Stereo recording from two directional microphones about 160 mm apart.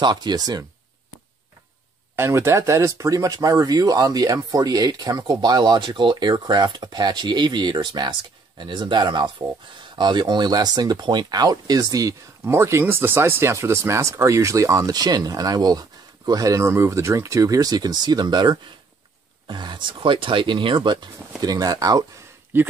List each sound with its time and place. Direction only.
0.0 s speech: 25° right (ahead or behind)
2.1 s speech: 15° right (ahead or behind)